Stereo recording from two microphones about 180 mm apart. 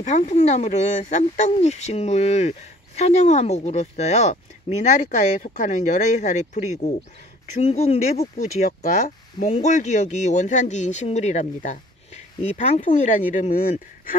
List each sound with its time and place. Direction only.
0.0 s speech: 40° left (ahead or behind)